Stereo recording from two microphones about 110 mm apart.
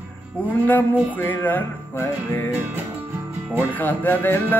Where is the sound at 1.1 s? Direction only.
15° left (ahead or behind).